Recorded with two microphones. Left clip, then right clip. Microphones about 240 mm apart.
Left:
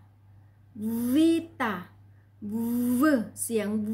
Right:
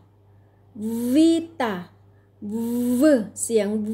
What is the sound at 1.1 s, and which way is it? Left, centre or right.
A woman's voice, centre.